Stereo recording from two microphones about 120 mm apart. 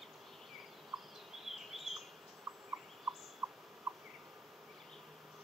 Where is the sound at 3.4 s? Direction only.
30° right (ahead or behind).